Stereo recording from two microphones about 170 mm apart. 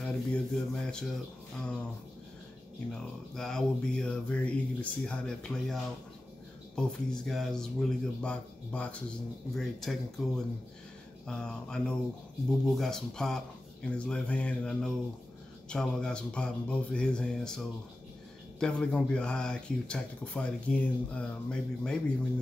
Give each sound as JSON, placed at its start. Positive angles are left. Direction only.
{"t": 0.0, "sound": "speech", "side_deg": 5}
{"t": 2.9, "sound": "speech", "side_deg": 5}